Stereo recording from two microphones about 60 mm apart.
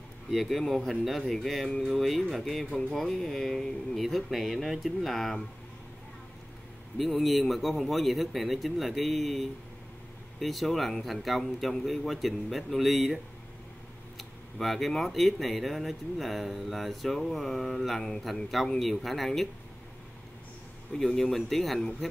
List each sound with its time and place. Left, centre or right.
0.3 s speech: centre
7.0 s speech: centre
20.9 s speech: centre